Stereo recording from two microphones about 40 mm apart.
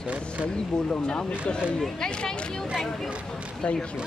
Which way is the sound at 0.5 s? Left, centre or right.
Centre.